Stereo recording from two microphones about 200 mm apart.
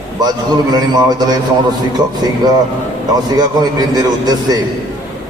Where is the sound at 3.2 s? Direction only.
20° right (ahead or behind).